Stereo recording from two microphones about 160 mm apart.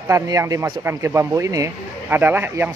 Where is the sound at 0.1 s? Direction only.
20° right (ahead or behind).